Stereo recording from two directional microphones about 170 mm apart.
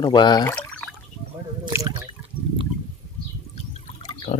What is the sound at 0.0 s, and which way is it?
Speech, 25° left (ahead or behind).